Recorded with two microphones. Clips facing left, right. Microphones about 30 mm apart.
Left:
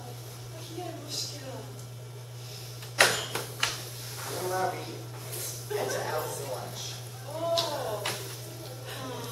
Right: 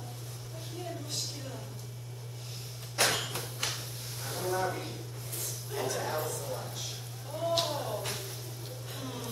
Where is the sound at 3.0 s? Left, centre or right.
Left.